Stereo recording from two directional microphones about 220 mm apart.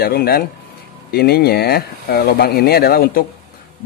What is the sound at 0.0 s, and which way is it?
Speech, 45° left (ahead or behind).